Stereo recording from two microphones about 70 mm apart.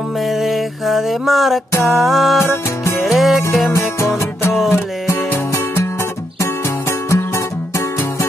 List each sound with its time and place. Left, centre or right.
0.3 s music: centre
2.4 s music: left
3.0 s music: centre
4.0 s music: left
7.1 s music: left